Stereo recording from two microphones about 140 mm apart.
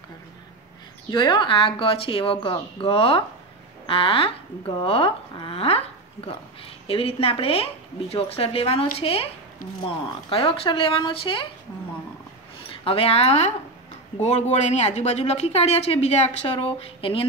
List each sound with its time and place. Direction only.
1.1 s speech: 35° left (ahead or behind)
12.6 s speech: 40° left (ahead or behind)